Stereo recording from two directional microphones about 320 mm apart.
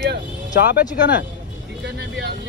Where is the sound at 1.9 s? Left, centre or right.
Right.